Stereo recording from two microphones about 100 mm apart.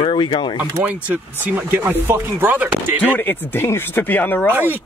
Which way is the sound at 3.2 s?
20° left (ahead or behind).